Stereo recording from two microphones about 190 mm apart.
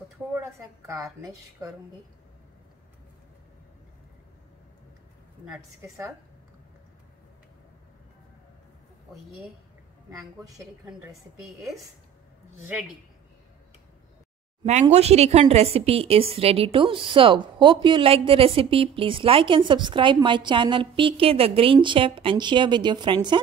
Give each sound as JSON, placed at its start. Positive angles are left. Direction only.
{"t": 1.0, "sound": "speech", "side_deg": -10}
{"t": 5.4, "sound": "a woman's voice", "side_deg": -5}
{"t": 9.1, "sound": "a woman's voice", "side_deg": 0}
{"t": 10.9, "sound": "speech", "side_deg": -10}
{"t": 11.4, "sound": "a woman's voice", "side_deg": 0}
{"t": 14.6, "sound": "speech", "side_deg": -35}